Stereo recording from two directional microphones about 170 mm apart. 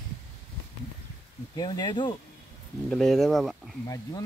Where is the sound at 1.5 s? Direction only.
25° left (ahead or behind).